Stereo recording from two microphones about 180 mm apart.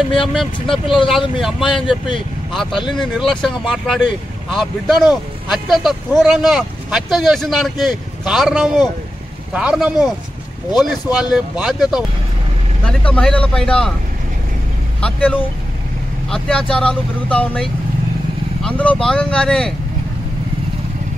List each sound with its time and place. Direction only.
0.3 s speech: centre (ahead or behind)
0.8 s speech: 30° left (ahead or behind)
3.0 s speech: centre (ahead or behind)
12.8 s speech: 5° left (ahead or behind)
15.0 s speech: 5° left (ahead or behind)